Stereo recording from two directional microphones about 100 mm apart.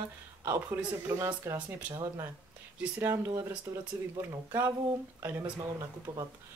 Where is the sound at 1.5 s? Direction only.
15° right (ahead or behind).